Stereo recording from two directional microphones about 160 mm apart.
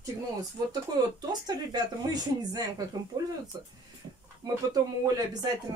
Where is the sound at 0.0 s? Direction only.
25° right (ahead or behind).